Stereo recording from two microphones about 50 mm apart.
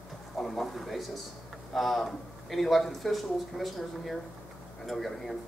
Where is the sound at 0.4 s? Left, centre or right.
Centre.